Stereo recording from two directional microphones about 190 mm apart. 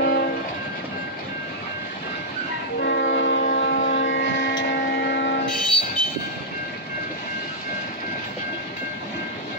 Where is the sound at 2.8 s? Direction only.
65° left (ahead or behind).